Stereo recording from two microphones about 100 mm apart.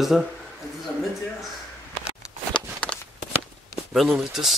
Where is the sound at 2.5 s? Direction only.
10° left (ahead or behind).